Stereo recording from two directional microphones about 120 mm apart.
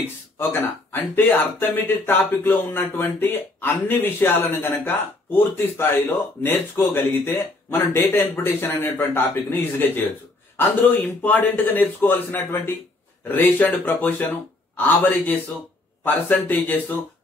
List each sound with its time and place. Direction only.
1.1 s speech: 15° left (ahead or behind)